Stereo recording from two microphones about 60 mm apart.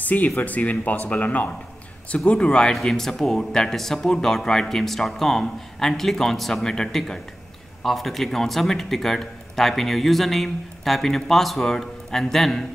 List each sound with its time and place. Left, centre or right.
0.0 s speech: left; by 12.6 s centre